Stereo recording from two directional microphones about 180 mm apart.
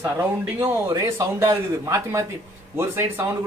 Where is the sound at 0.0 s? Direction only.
15° right (ahead or behind).